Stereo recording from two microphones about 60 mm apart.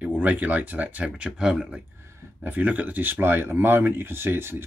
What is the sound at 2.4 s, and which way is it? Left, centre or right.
Speech, right.